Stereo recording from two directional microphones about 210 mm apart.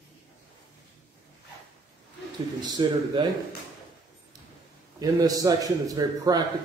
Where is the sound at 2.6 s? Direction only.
20° right (ahead or behind).